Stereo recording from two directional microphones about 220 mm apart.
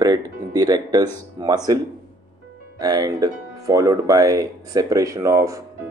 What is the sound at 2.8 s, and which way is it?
Speech, 20° right (ahead or behind).